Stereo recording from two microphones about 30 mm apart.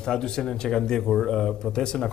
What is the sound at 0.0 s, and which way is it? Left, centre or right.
A man's voice, left.